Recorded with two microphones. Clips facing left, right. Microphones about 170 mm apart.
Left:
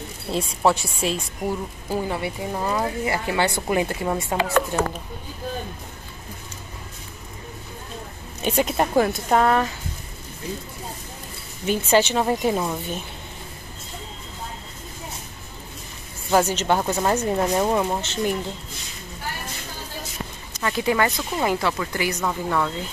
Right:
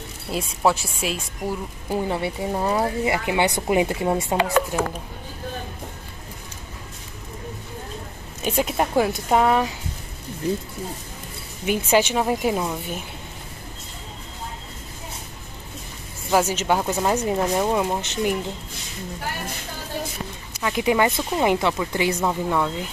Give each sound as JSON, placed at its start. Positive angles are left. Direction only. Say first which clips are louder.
{"t": 0.4, "sound": "a woman's voice", "louder": "left 1 dB", "side_deg": 0}
{"t": 1.9, "sound": "speech", "louder": "right 2 dB", "side_deg": -20}
{"t": 8.5, "sound": "speech", "louder": "left 1 dB", "side_deg": -5}
{"t": 11.6, "sound": "speech", "louder": "even", "side_deg": -10}
{"t": 16.3, "sound": "speech", "louder": "left 1 dB", "side_deg": -5}
{"t": 20.5, "sound": "speech", "louder": "right 1 dB", "side_deg": -10}